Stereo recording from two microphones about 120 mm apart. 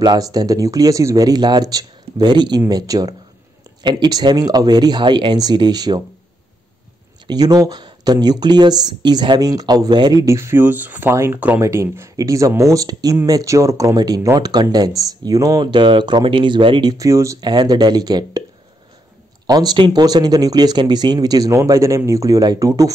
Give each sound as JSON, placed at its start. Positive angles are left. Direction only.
{"t": 0.0, "sound": "speech", "side_deg": -35}
{"t": 7.2, "sound": "speech", "side_deg": -35}
{"t": 16.9, "sound": "speech", "side_deg": -25}
{"t": 17.4, "sound": "speech", "side_deg": -35}
{"t": 19.4, "sound": "speech", "side_deg": -35}